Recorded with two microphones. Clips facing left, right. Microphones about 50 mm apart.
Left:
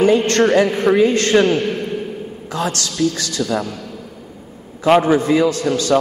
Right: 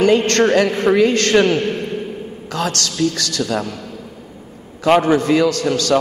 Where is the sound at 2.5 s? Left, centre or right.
Right.